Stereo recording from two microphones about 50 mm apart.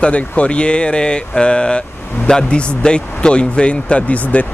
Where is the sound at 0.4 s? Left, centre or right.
Left.